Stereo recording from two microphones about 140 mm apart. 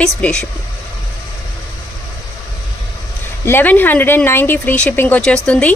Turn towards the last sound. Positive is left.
turn(degrees=10)  # may be behind; listen again after turning